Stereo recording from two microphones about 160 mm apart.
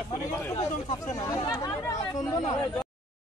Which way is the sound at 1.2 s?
25° left (ahead or behind).